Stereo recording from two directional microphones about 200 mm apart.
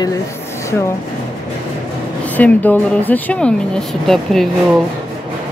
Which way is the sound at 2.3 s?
10° left (ahead or behind).